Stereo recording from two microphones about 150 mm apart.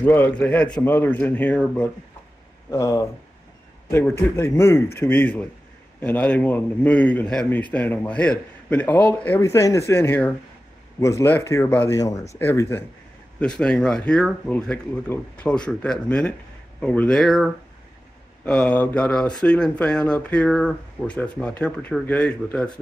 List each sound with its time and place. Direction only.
0.0 s a man's voice: 10° left (ahead or behind)